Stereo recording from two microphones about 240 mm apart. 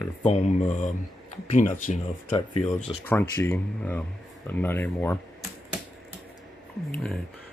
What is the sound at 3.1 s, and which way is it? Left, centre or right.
Speech, centre.